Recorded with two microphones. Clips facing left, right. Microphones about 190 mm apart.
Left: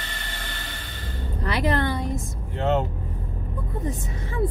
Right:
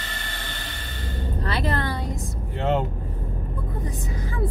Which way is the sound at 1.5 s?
20° left (ahead or behind).